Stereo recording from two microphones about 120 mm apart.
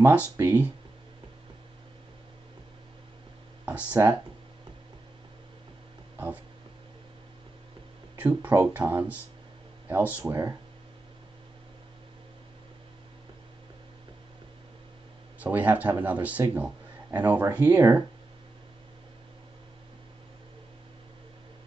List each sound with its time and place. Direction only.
0.0 s speech: 15° right (ahead or behind)
3.6 s speech: 15° right (ahead or behind)
6.1 s speech: 15° right (ahead or behind)
8.2 s speech: 15° right (ahead or behind)
15.4 s a man's voice: 15° right (ahead or behind)